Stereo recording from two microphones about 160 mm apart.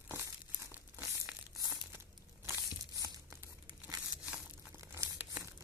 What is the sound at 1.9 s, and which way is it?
Crumpling, 15° right (ahead or behind).